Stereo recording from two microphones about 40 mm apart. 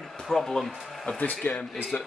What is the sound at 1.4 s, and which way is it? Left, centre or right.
Speech, left.